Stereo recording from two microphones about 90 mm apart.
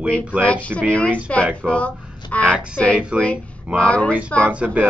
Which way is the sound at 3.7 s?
15° left (ahead or behind).